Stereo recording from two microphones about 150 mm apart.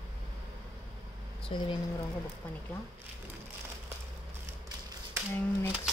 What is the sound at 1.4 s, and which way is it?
Speech, 35° left (ahead or behind).